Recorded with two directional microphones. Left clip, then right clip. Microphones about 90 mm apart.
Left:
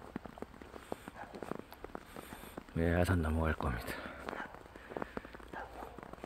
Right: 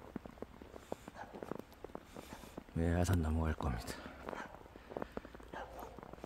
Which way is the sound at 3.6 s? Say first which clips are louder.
Left 4 dB; 30° right (ahead or behind).